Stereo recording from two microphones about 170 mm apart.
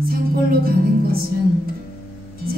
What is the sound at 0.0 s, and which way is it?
Music, 60° right (ahead or behind).